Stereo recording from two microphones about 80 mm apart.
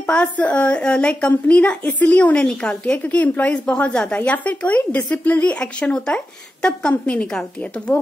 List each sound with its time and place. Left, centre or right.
0.0 s speech: centre
7.9 s speech: left